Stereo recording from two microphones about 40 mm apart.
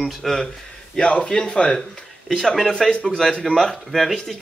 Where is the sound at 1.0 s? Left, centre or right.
Left.